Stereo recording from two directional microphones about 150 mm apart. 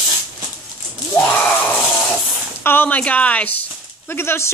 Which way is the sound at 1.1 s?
10° left (ahead or behind).